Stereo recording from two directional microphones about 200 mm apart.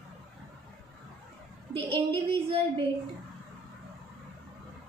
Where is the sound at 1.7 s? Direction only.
30° right (ahead or behind).